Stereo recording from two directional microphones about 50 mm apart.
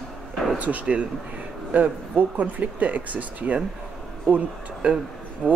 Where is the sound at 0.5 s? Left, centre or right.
Right.